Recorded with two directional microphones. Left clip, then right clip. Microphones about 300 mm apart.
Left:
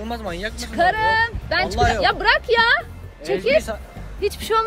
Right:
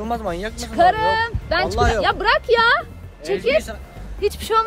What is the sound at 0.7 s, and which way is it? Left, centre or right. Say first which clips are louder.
Speech: right 2 dB; centre.